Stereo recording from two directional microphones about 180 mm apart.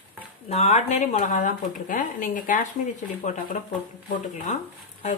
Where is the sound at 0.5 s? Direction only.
35° left (ahead or behind).